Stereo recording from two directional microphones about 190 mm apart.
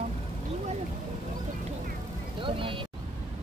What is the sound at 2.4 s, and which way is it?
Speech, 25° right (ahead or behind).